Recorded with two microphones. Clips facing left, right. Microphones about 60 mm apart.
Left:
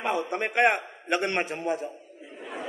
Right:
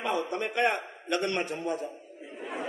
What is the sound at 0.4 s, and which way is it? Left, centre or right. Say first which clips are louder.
Speech: left 6 dB; left.